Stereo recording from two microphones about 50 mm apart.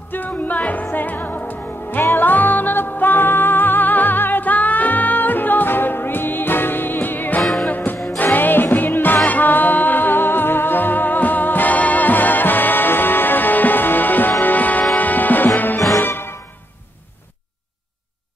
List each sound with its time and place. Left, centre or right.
0.1 s music: left
7.4 s music: centre
7.7 s music: left